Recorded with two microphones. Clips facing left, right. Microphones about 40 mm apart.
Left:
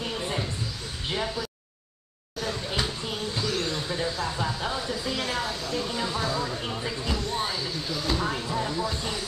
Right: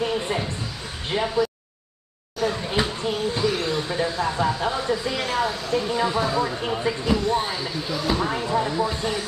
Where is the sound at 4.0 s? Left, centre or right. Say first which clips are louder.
Right 7 dB; right.